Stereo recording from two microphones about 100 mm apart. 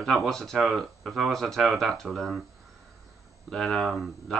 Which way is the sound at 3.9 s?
5° right (ahead or behind).